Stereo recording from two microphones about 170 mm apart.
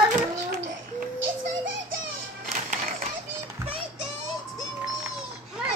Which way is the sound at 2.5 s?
45° right (ahead or behind).